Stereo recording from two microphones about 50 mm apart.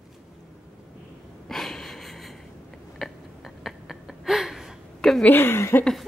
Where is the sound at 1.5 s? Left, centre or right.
Centre.